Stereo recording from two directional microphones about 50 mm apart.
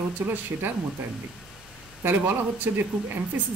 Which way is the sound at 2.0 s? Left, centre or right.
Right.